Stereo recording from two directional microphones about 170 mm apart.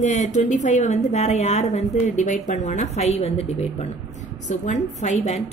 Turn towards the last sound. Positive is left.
turn(degrees=45)  # may be behind; listen again after turning